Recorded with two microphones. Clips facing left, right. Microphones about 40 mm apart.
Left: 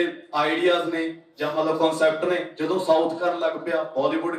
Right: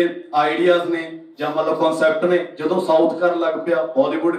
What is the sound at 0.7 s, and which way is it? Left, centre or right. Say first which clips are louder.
Speech: right 5 dB; centre.